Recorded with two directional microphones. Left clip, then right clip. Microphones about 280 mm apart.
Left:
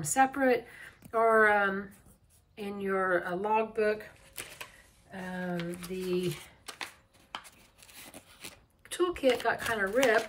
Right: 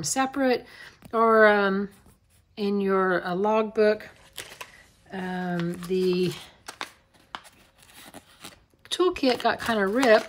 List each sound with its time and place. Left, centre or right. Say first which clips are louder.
0.1 s speech: right 1 dB; centre
5.1 s speech: right 6 dB; right
7.3 s a sound: right 3 dB; centre